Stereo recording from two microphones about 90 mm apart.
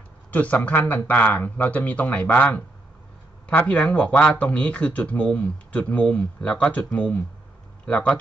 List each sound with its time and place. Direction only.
0.3 s speech: 15° left (ahead or behind)